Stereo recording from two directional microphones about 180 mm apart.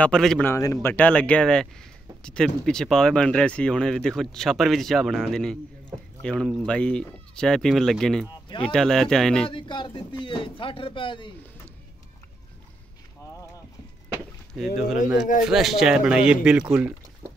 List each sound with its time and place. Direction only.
0.0 s speech: 5° left (ahead or behind)
0.5 s a man's voice: 20° left (ahead or behind); by 8.3 s centre (ahead or behind)
8.3 s speech: 25° left (ahead or behind)
8.6 s speech: 5° left (ahead or behind)
9.5 s speech: 25° left (ahead or behind)
14.5 s speech: centre (ahead or behind)